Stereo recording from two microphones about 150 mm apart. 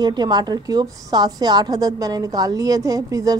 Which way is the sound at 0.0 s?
30° right (ahead or behind).